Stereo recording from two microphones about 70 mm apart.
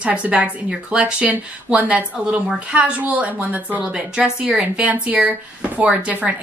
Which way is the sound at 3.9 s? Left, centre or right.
Centre.